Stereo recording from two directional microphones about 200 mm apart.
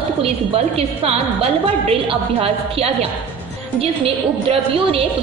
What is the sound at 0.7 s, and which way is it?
A woman's voice, 30° right (ahead or behind).